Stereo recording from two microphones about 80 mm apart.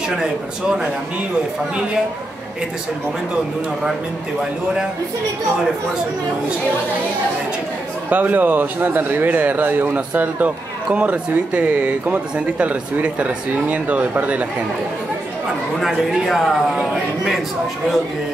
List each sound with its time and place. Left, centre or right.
0.2 s speech: centre
8.1 s speech: right
15.8 s a man's voice: centre